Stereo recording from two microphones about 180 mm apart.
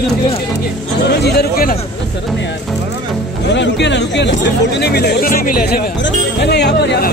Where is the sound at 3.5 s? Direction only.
75° left (ahead or behind).